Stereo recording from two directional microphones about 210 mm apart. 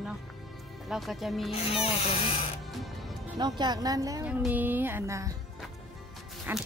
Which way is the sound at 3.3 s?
20° right (ahead or behind).